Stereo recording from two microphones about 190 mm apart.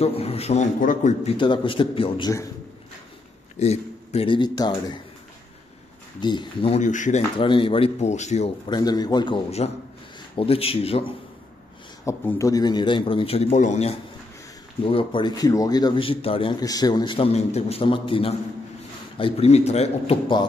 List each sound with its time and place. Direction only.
0.0 s a man's voice: 30° left (ahead or behind)
1.3 s speech: 25° left (ahead or behind)
3.5 s speech: 35° left (ahead or behind)
6.2 s a man's voice: 25° left (ahead or behind); by 7.2 s 40° left (ahead or behind)
7.3 s a man's voice: 25° left (ahead or behind)
8.6 s a man's voice: 20° left (ahead or behind)
12.0 s a man's voice: 15° left (ahead or behind)